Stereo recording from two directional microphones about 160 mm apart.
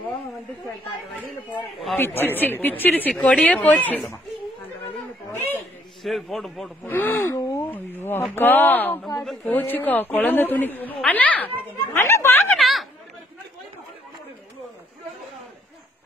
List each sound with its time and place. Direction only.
2.0 s a woman's voice: 15° left (ahead or behind)
6.0 s a man's voice: centre (ahead or behind)
6.9 s a woman's voice: 10° left (ahead or behind)
9.6 s a woman's voice: 10° left (ahead or behind)
12.5 s chatter: centre (ahead or behind)